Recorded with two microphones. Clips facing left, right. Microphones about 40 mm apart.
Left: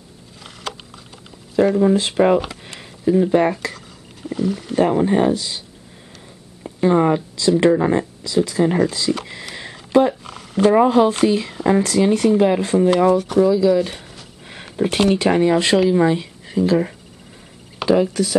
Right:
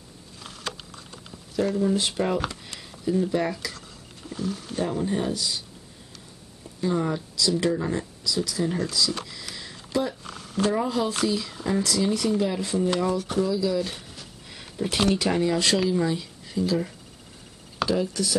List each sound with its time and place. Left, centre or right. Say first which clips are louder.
1.8 s speech: left 9 dB; left
4.3 s speech: left 9 dB; left
4.7 s speech: left 11 dB; left
6.6 s speech: left 10 dB; left
9.6 s a sound: left 12 dB; left
10.2 s a sound: left 9 dB; left
10.7 s speech: left 14 dB; left
13.4 s speech: left 9 dB; left
14.5 s a sound: left 8 dB; left
15.0 s speech: left 7 dB; left